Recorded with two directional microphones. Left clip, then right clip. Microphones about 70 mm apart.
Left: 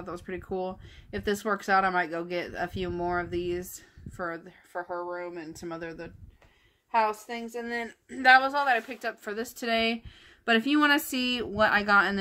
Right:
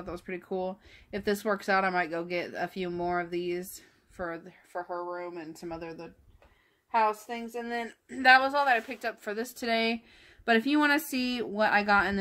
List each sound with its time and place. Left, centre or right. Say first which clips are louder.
0.3 s speech: even; right
4.7 s speech: left 1 dB; centre
7.2 s speech: left 1 dB; centre
7.7 s speech: left 1 dB; right; by 12.2 s centre